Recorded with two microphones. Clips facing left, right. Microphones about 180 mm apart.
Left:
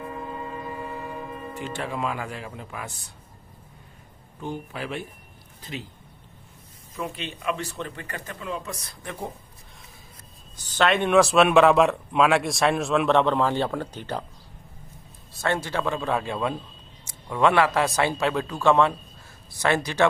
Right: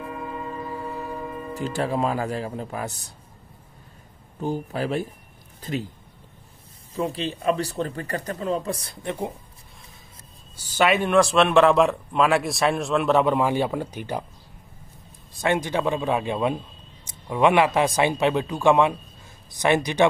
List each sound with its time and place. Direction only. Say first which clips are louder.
1.5 s speech: right 7 dB; 35° right (ahead or behind)
4.4 s speech: right 6 dB; 40° right (ahead or behind)
7.0 s speech: right 6 dB; 35° right (ahead or behind)
10.5 s speech: right 2 dB; 10° right (ahead or behind)
15.3 s a man's voice: right 3 dB; 15° right (ahead or behind)